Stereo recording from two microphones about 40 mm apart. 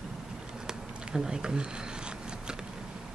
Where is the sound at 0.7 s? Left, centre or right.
Centre.